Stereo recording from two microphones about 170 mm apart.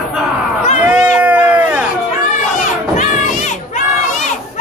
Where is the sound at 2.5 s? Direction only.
45° left (ahead or behind).